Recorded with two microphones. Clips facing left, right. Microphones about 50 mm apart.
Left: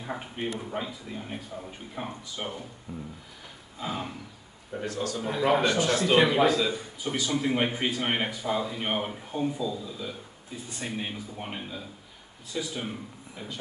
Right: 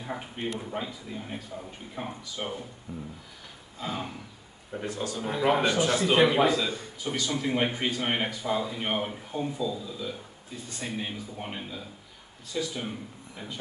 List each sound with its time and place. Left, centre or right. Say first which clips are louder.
0.0 s a sound: left 1 dB; centre
0.6 s speech: left 1 dB; centre
4.8 s a man's voice: left 2 dB; right
5.2 s a man's voice: even; centre